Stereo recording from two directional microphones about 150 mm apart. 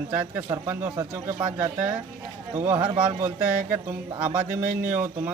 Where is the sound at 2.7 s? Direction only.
30° right (ahead or behind).